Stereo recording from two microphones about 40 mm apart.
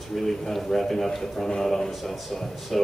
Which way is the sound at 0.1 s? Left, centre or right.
Centre.